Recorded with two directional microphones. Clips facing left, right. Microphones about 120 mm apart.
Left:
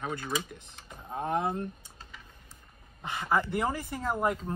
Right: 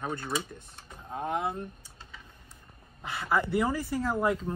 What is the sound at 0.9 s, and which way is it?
Vehicle, 5° left (ahead or behind).